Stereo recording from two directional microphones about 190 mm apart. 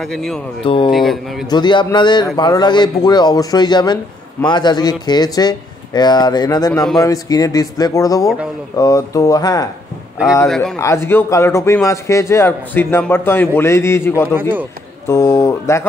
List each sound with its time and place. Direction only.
0.0 s speech: centre (ahead or behind)
0.7 s a man's voice: 25° left (ahead or behind)
0.9 s speech: centre (ahead or behind)
1.5 s a man's voice: 25° left (ahead or behind)
10.8 s a man's voice: 15° left (ahead or behind)